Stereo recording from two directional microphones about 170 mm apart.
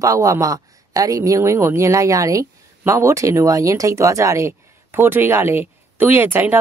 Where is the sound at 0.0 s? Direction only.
20° right (ahead or behind).